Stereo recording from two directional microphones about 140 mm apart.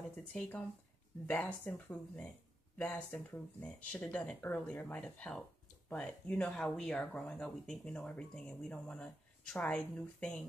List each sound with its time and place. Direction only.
0.3 s speech: 10° left (ahead or behind)